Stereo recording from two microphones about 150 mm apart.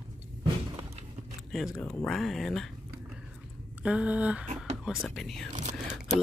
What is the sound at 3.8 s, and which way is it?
Speech, 10° right (ahead or behind).